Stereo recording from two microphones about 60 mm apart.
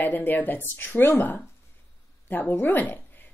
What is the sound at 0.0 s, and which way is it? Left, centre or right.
A woman's voice, left.